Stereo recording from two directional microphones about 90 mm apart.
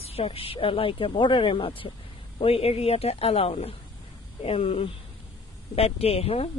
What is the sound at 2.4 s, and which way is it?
A man's voice, 90° left.